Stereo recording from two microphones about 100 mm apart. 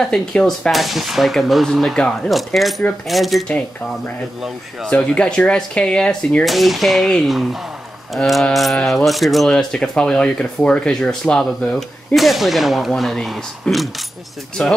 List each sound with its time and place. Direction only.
0.0 s speech: 5° left (ahead or behind)
4.8 s speech: 10° left (ahead or behind)
6.4 s speech: centre (ahead or behind)
14.6 s speech: 10° left (ahead or behind)